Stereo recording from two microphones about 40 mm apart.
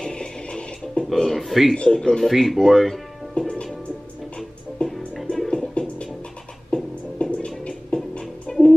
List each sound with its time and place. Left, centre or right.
0.0 s a sound: left
1.1 s a man's voice: centre
2.0 s speech: centre
2.3 s a man's voice: centre
3.3 s music: left
4.8 s music: left